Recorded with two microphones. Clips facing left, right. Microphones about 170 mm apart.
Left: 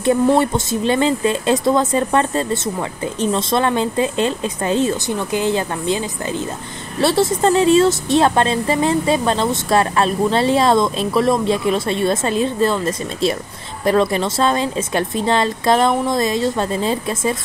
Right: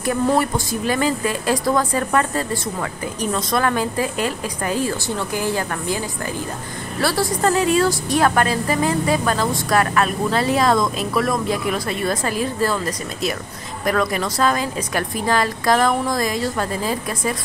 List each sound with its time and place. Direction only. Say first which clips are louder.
0.0 s a woman's voice: left 4 dB; 25° left (ahead or behind)